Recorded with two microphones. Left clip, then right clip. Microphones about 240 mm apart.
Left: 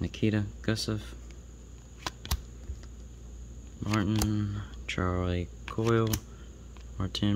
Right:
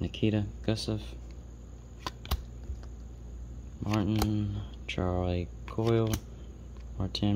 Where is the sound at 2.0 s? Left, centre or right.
Centre.